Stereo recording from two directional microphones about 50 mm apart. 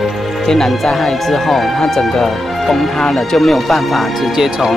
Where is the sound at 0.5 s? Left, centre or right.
Centre.